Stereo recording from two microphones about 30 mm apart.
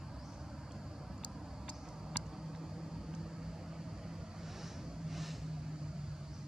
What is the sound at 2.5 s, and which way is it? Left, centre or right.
Vehicle, centre.